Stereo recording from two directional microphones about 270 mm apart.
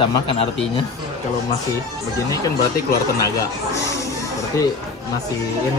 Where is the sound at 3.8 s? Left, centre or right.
Centre.